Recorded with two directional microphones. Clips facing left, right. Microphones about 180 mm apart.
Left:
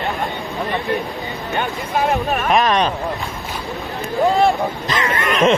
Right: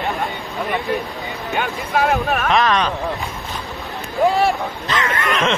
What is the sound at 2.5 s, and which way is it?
Speech, 15° left (ahead or behind).